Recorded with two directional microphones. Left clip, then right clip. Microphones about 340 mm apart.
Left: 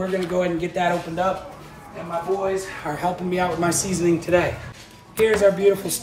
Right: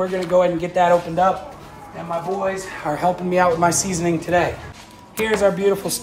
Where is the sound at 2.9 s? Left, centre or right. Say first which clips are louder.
Right 5 dB; right.